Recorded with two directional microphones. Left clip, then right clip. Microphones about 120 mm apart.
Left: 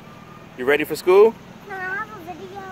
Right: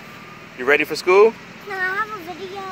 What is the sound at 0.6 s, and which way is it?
Speech, 40° left (ahead or behind).